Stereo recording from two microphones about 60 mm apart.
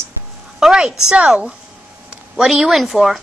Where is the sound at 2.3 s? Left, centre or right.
Centre.